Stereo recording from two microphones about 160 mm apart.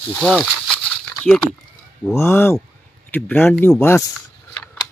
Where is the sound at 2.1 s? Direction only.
15° left (ahead or behind).